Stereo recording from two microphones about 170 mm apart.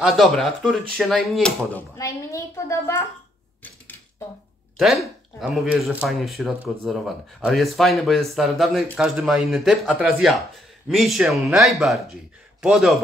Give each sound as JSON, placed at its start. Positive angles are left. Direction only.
{"t": 0.0, "sound": "speech", "side_deg": 0}
{"t": 4.7, "sound": "speech", "side_deg": 0}